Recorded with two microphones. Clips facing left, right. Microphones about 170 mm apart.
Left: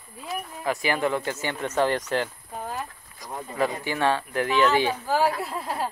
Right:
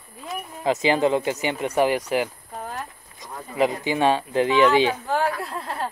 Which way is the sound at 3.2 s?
20° right (ahead or behind).